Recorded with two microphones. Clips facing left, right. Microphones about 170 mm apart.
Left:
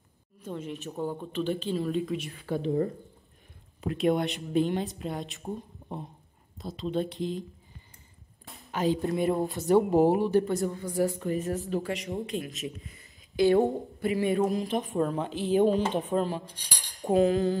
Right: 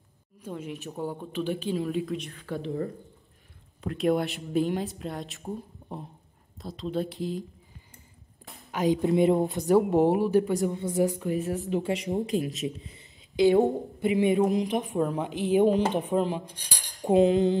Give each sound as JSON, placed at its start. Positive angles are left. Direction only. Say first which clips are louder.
{"t": 0.4, "sound": "a woman's voice", "louder": "even", "side_deg": -10}
{"t": 2.3, "sound": "speech", "louder": "left 4 dB", "side_deg": 15}
{"t": 3.8, "sound": "speech", "louder": "even", "side_deg": 0}
{"t": 8.7, "sound": "speech", "louder": "right 4 dB", "side_deg": -15}
{"t": 9.7, "sound": "a woman's voice", "louder": "even", "side_deg": 0}
{"t": 12.3, "sound": "speech", "louder": "right 6 dB", "side_deg": -35}
{"t": 12.6, "sound": "a woman's voice", "louder": "right 4 dB", "side_deg": -20}